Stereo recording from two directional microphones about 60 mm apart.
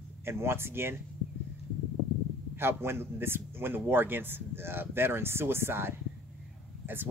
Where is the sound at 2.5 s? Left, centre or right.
Right.